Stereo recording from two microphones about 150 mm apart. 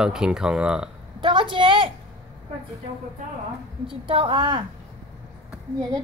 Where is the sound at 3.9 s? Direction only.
35° right (ahead or behind).